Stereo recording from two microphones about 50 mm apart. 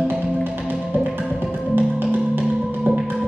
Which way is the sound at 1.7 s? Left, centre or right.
Right.